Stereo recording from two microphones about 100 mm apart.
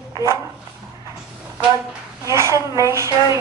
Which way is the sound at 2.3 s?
30° right (ahead or behind).